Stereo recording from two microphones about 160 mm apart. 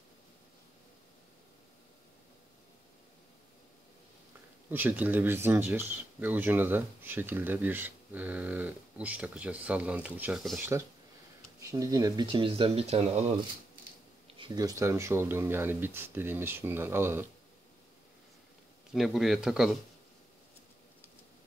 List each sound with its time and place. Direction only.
4.6 s speech: 10° right (ahead or behind); by 13.3 s 45° right (ahead or behind)
14.4 s speech: 25° right (ahead or behind)
18.9 s speech: centre (ahead or behind)